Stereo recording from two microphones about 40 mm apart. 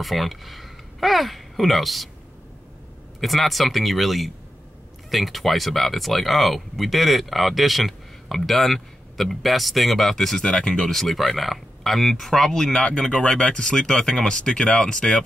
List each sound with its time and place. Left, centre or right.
0.0 s speech: centre
3.2 s speech: centre
10.4 s speech: left
10.9 s speech: centre
13.1 s speech: left